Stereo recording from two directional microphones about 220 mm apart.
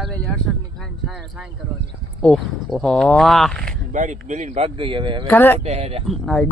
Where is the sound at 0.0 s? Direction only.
Centre (ahead or behind).